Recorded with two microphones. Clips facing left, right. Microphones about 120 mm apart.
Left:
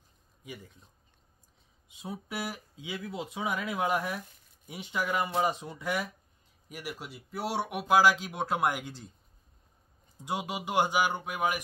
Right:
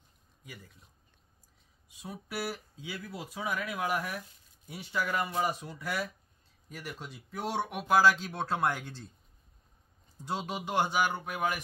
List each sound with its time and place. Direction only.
1.9 s speech: 20° left (ahead or behind)
10.2 s speech: 15° left (ahead or behind)